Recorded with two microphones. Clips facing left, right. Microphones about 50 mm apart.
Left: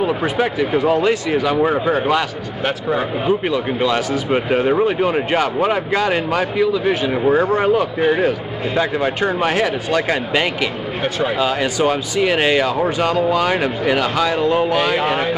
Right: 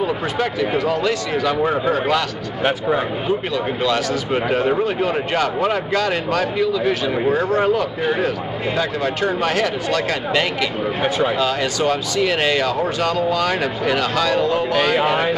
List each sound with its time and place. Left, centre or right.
0.0 s speech: centre
1.4 s speech: centre
2.6 s speech: centre
3.3 s speech: centre
11.0 s speech: centre
11.3 s speech: centre